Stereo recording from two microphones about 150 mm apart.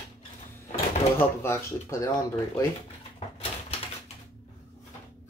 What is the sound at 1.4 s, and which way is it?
Speech, 20° left (ahead or behind).